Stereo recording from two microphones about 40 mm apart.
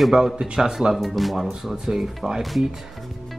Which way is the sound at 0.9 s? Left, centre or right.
Centre.